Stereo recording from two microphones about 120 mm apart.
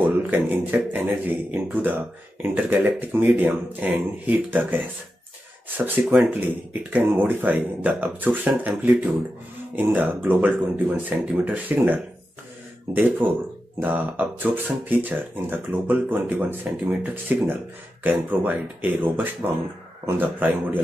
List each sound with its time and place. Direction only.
0.0 s speech: 15° right (ahead or behind)
5.9 s speech: 15° right (ahead or behind)
13.2 s speech: 15° right (ahead or behind)